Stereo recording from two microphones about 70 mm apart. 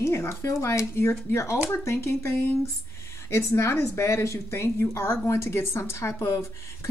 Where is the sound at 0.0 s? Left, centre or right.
Left.